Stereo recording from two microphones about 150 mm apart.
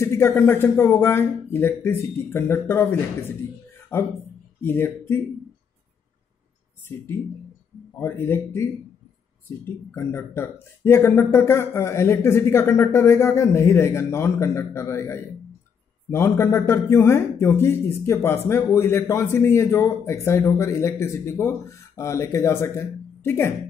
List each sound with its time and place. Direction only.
0.0 s a sound: 20° left (ahead or behind)
0.4 s speech: 15° left (ahead or behind)
8.0 s speech: 15° left (ahead or behind)
9.8 s a man's voice: 15° left (ahead or behind)